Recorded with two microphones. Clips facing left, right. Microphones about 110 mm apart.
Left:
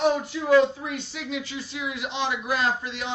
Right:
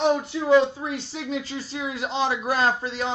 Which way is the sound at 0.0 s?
25° right (ahead or behind).